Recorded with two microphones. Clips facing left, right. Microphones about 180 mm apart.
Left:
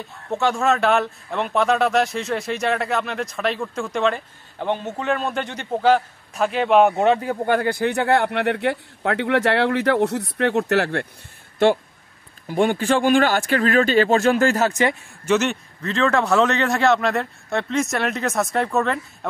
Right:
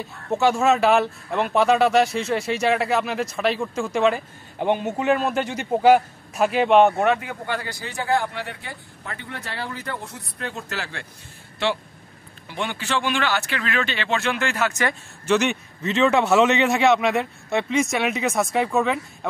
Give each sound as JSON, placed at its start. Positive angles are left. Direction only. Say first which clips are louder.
{"t": 0.3, "sound": "speech", "louder": "right 1 dB", "side_deg": -5}
{"t": 7.2, "sound": "a man's voice", "louder": "left 8 dB", "side_deg": 40}
{"t": 7.5, "sound": "speech", "louder": "left 11 dB", "side_deg": 55}
{"t": 11.6, "sound": "speech", "louder": "left 8 dB", "side_deg": 50}
{"t": 15.2, "sound": "speech", "louder": "left 1 dB", "side_deg": 5}
{"t": 15.8, "sound": "speech", "louder": "right 1 dB", "side_deg": -20}
{"t": 16.1, "sound": "speech", "louder": "even", "side_deg": -5}